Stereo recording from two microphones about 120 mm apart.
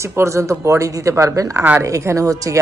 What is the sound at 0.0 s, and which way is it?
A woman's voice, 25° right (ahead or behind).